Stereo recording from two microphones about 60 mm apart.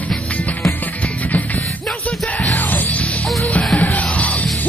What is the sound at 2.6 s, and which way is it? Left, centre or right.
Music, left.